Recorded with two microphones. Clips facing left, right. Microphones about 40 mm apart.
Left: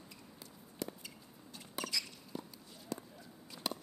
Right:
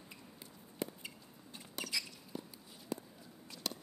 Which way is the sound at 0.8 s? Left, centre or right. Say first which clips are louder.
Right 1 dB; right.